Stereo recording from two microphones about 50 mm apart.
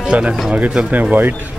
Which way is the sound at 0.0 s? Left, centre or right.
Right.